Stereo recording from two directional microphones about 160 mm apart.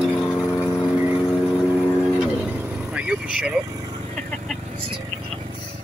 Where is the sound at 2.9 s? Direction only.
5° right (ahead or behind).